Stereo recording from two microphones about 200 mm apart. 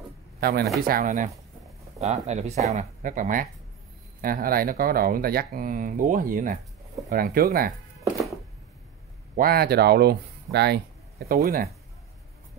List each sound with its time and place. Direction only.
0.4 s speech: 50° right (ahead or behind)
9.3 s speech: 50° right (ahead or behind)